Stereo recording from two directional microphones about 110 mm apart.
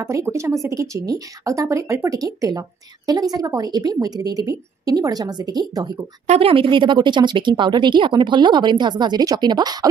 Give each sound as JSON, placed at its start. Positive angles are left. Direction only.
{"t": 0.0, "sound": "a woman's voice", "side_deg": -25}
{"t": 6.2, "sound": "speech", "side_deg": -75}
{"t": 6.5, "sound": "speech", "side_deg": -50}